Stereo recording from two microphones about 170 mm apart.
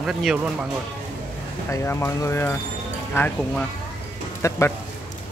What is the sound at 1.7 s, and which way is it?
Speech, 15° left (ahead or behind).